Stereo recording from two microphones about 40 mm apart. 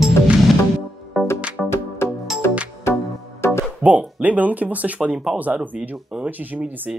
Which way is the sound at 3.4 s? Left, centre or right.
Left.